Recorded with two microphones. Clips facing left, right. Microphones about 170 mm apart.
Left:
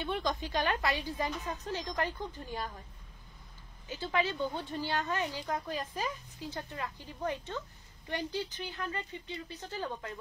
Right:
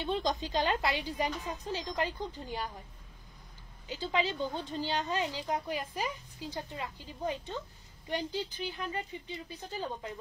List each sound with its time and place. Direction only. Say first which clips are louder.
0.0 s speech: right 2 dB; 20° right (ahead or behind)
3.9 s speech: even; 15° right (ahead or behind)